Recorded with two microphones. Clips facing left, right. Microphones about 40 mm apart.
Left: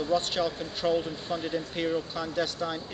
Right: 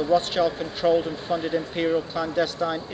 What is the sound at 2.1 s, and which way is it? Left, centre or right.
Speech, centre.